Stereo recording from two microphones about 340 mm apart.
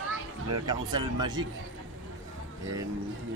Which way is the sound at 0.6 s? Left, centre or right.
Centre.